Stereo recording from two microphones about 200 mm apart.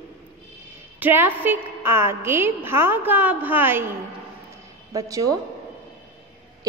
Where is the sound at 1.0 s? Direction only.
10° right (ahead or behind).